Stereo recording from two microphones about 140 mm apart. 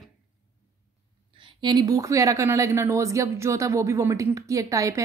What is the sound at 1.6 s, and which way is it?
A woman's voice, 30° right (ahead or behind).